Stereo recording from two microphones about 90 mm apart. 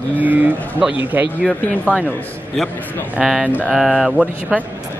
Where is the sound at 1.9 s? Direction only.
15° left (ahead or behind).